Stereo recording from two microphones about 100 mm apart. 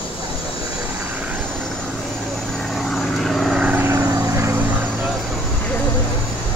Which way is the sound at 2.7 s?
5° left (ahead or behind).